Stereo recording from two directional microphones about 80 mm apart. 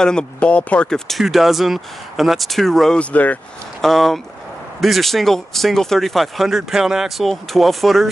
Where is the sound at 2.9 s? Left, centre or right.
Centre.